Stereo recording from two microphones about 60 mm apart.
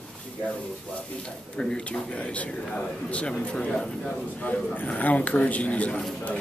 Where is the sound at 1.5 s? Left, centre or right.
Centre.